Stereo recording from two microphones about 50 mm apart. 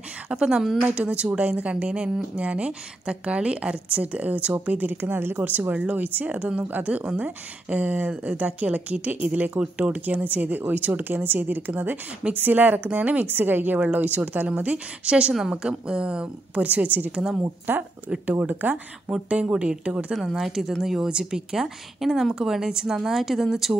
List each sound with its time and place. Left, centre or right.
0.3 s speech: centre
0.9 s a woman's voice: right
6.4 s a woman's voice: right
16.6 s speech: right
17.7 s speech: right
18.2 s a woman's voice: right
19.2 s a woman's voice: centre
20.2 s speech: centre